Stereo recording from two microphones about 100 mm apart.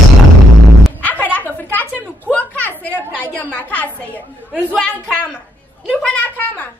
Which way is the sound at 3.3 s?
15° left (ahead or behind).